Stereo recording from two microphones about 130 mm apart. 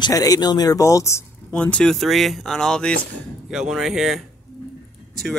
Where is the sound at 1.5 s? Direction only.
10° left (ahead or behind).